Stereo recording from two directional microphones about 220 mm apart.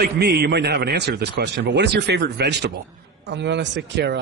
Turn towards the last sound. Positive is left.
turn(degrees=-50)  # may be behind; listen again after turning